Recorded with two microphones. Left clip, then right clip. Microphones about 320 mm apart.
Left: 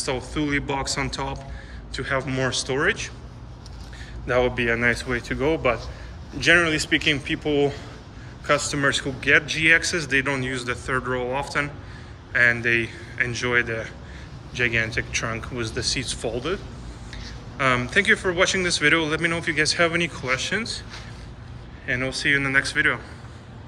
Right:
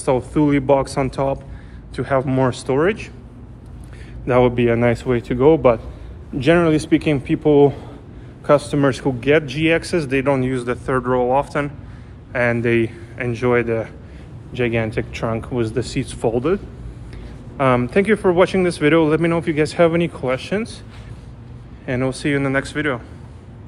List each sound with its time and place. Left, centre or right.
0.0 s speech: centre
4.3 s speech: centre
7.4 s speech: right
8.6 s speech: centre
17.6 s speech: centre
21.8 s speech: centre